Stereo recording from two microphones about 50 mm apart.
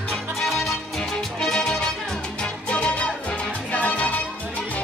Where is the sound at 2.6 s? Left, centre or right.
Left.